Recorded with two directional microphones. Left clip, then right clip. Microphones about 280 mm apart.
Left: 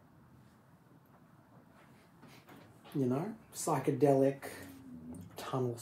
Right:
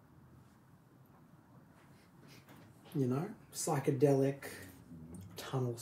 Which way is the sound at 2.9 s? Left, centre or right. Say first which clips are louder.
Left 2 dB; left.